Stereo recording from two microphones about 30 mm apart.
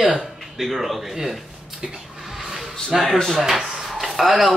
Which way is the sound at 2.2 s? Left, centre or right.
Centre.